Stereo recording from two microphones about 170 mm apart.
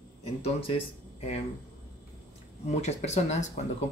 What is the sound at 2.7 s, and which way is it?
Speech, 40° left (ahead or behind).